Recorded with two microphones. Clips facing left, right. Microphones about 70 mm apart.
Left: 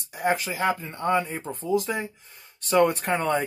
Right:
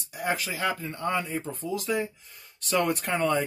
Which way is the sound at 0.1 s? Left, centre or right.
Left.